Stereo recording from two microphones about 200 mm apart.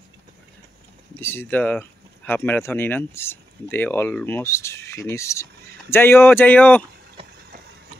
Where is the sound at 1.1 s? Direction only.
10° left (ahead or behind).